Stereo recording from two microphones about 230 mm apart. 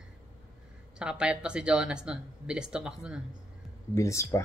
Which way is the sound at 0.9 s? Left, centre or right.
Centre.